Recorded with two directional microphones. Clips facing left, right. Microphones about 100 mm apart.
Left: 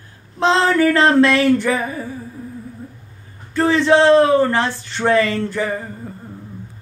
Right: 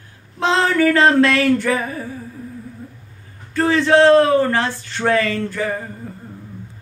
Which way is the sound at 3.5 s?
25° left (ahead or behind).